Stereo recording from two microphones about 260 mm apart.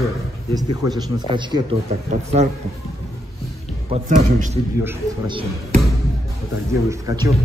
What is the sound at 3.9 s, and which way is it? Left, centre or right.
Speech, right.